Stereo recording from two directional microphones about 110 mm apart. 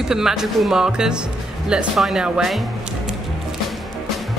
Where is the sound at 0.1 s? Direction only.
5° right (ahead or behind).